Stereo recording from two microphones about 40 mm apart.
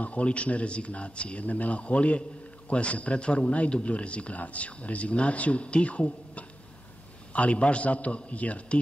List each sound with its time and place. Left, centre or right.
0.0 s a man's voice: left